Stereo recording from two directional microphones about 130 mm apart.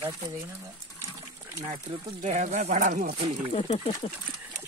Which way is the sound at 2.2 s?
65° right (ahead or behind).